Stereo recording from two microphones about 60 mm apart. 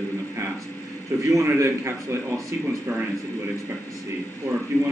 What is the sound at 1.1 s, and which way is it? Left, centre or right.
Speech, right.